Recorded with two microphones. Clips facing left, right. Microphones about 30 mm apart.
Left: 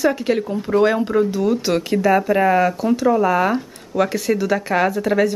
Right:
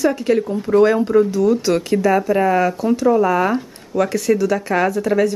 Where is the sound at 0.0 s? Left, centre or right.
Centre.